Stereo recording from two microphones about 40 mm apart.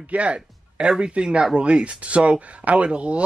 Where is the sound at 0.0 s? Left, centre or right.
Right.